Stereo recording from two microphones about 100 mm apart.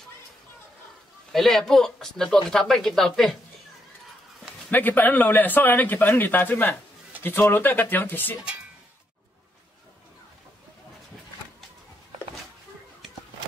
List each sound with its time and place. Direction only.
1.3 s speech: centre (ahead or behind)
4.6 s a man's voice: 20° left (ahead or behind)